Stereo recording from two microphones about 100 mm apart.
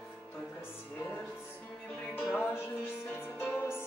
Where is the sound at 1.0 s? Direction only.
20° left (ahead or behind).